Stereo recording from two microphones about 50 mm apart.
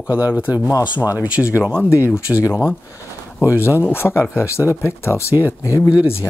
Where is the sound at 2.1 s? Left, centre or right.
Left.